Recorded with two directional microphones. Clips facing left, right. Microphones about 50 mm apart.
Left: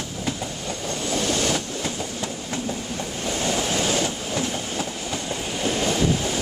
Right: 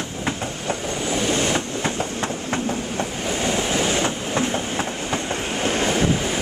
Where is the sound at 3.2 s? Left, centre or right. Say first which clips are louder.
Right 1 dB; right.